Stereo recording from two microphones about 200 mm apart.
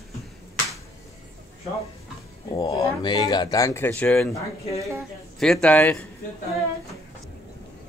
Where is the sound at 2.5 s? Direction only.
20° left (ahead or behind); by 4.4 s 5° left (ahead or behind).